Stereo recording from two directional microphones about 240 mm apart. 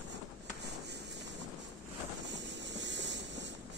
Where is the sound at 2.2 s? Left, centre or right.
Right.